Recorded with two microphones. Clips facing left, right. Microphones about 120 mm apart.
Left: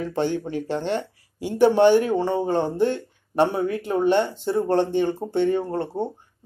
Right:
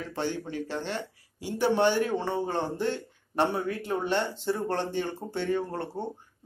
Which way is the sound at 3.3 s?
15° left (ahead or behind).